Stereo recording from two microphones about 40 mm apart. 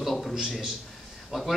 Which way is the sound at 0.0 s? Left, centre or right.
Centre.